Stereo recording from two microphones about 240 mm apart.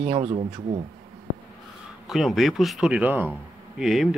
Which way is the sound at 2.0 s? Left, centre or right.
Centre.